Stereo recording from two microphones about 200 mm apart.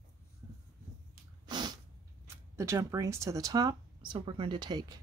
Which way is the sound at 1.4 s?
20° right (ahead or behind).